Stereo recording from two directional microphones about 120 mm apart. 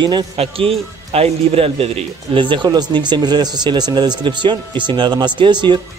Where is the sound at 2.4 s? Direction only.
40° right (ahead or behind).